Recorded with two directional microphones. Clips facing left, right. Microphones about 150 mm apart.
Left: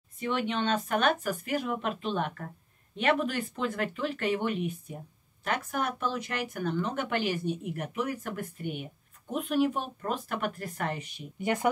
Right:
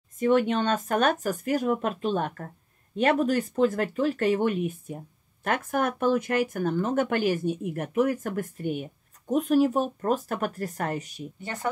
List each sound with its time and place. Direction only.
0.2 s speech: 45° right (ahead or behind)
11.4 s speech: 15° left (ahead or behind)